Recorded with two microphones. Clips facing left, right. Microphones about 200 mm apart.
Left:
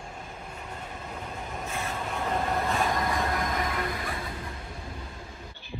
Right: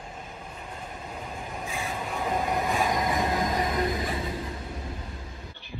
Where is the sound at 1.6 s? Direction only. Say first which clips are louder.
Even; centre (ahead or behind).